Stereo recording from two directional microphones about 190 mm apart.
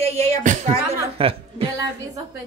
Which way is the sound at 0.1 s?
35° right (ahead or behind).